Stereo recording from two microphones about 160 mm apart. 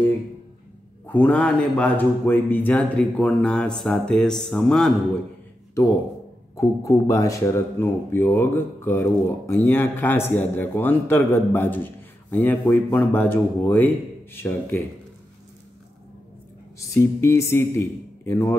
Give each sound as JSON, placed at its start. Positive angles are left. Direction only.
{"t": 1.0, "sound": "a man's voice", "side_deg": 10}
{"t": 6.5, "sound": "a man's voice", "side_deg": 20}
{"t": 16.9, "sound": "a man's voice", "side_deg": 20}